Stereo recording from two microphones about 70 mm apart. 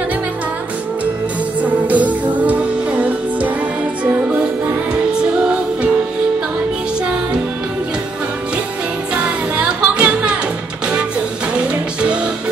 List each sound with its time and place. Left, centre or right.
1.6 s music: right
5.1 s music: centre
9.1 s music: centre
11.5 s music: centre